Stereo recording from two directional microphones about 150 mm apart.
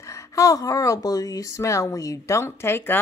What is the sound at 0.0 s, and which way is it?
Speech, 20° left (ahead or behind).